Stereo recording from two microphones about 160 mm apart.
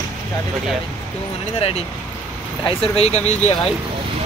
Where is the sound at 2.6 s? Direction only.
40° left (ahead or behind).